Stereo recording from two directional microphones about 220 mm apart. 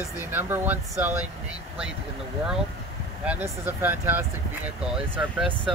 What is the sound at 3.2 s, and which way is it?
Speech, 5° right (ahead or behind).